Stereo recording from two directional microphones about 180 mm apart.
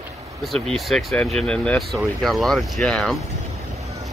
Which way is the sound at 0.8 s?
Centre (ahead or behind).